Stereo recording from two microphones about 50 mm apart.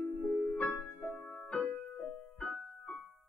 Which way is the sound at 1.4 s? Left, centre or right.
Left.